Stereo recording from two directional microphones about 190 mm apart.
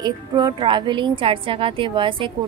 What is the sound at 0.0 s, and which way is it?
A woman's voice, 20° right (ahead or behind).